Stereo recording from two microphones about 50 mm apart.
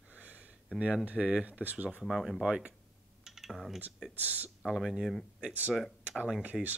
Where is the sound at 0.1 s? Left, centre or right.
Right.